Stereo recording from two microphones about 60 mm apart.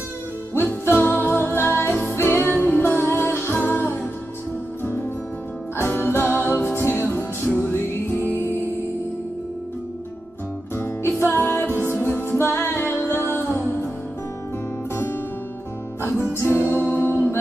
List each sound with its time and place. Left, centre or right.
0.6 s music: left
2.8 s music: left
5.8 s music: left
10.8 s music: left
16.3 s music: left